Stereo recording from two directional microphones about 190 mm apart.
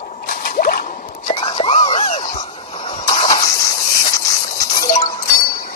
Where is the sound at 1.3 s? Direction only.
25° left (ahead or behind).